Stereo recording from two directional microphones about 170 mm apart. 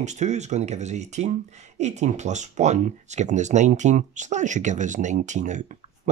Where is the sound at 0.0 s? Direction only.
45° right (ahead or behind).